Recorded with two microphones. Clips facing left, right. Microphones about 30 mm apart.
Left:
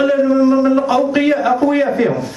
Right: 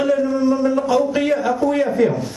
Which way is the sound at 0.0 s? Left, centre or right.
Left.